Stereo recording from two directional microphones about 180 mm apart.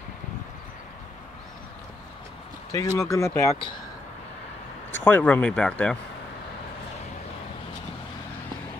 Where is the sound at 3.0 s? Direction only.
15° left (ahead or behind).